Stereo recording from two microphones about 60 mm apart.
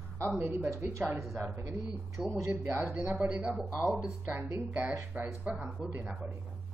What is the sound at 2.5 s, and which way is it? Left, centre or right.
Speech, right.